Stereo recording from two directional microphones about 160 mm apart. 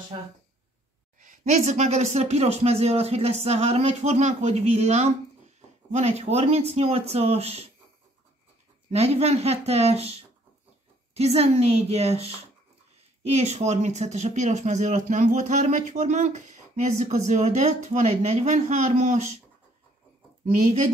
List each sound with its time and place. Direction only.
1.2 s speech: 50° right (ahead or behind)
8.9 s speech: 40° right (ahead or behind)